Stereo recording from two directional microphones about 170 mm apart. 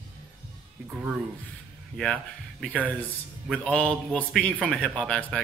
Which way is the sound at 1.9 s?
5° left (ahead or behind).